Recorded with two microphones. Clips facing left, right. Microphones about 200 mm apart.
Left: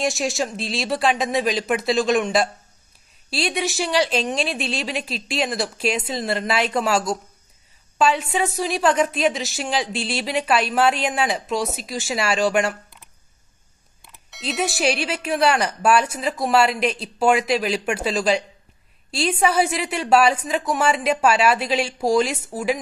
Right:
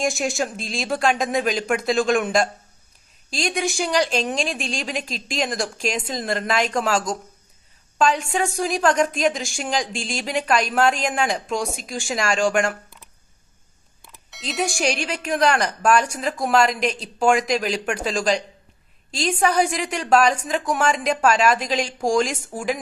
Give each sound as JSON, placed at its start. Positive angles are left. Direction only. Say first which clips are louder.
{"t": 0.0, "sound": "speech", "louder": "even", "side_deg": 0}
{"t": 3.5, "sound": "a woman's voice", "louder": "even", "side_deg": 0}
{"t": 9.9, "sound": "a woman's voice", "louder": "left 3 dB", "side_deg": -45}
{"t": 10.2, "sound": "speech", "louder": "even", "side_deg": 5}
{"t": 14.0, "sound": "a woman's voice", "louder": "left 3 dB", "side_deg": 0}